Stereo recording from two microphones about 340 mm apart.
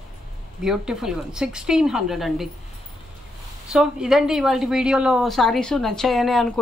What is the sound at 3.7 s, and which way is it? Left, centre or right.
A woman's voice, centre.